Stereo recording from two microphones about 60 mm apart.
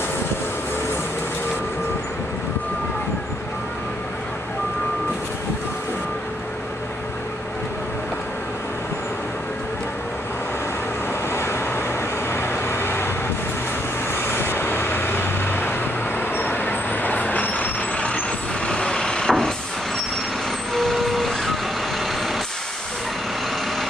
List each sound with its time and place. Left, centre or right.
11.3 s vehicle: left
14.1 s vehicle: left; by 19.5 s centre
20.7 s vehicle: centre